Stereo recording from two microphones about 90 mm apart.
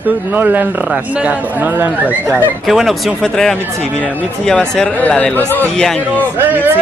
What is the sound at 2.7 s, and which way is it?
Speech, centre (ahead or behind).